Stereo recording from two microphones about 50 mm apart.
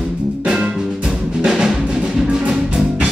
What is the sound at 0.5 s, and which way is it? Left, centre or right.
Music, centre.